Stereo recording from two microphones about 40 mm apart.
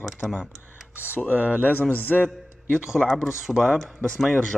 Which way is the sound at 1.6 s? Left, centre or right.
Left.